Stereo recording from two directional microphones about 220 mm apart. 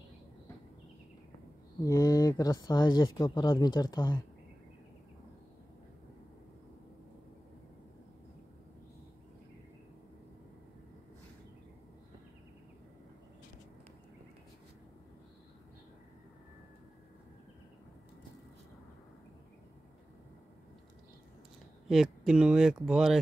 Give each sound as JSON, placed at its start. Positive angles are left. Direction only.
{"t": 1.8, "sound": "speech", "side_deg": 15}
{"t": 21.8, "sound": "speech", "side_deg": 0}